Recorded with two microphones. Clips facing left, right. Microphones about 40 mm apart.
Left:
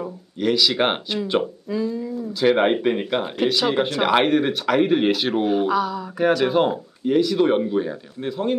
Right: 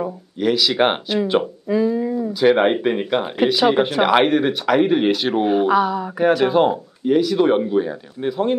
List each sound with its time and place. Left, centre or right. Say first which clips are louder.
0.4 s speech: right 2 dB; centre
1.7 s a sound: right 9 dB; right
2.4 s speech: right 2 dB; centre
5.4 s speech: right 6 dB; centre
6.3 s speech: right 3 dB; centre